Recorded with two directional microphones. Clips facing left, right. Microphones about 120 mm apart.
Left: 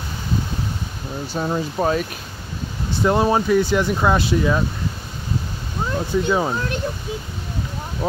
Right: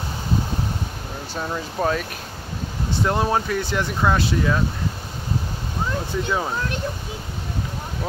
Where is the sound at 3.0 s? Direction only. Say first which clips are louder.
Left 4 dB; 10° left (ahead or behind).